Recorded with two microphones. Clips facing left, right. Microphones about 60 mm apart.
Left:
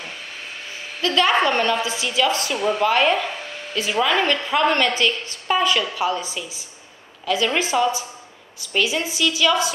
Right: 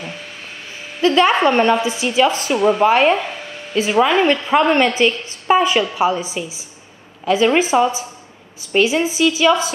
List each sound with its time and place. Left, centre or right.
1.0 s a woman's voice: right